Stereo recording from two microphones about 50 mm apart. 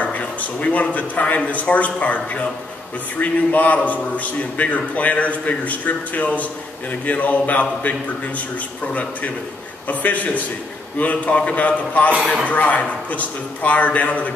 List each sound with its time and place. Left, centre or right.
0.0 s a man's voice: left
9.8 s a man's voice: left